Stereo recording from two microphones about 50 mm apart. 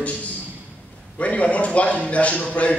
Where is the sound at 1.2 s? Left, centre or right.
Left.